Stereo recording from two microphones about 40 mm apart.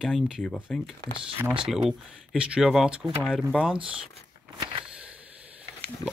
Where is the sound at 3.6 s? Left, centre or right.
Right.